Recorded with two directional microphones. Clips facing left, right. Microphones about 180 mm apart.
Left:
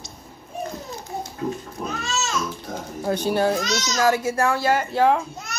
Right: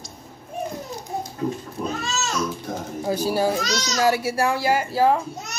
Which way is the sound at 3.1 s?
5° right (ahead or behind).